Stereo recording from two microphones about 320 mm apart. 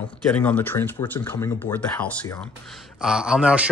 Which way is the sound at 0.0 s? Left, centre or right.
Centre.